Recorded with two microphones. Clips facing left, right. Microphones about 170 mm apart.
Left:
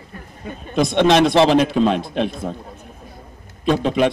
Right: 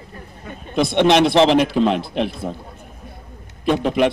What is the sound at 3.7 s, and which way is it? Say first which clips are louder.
Speech: even; 10° right (ahead or behind).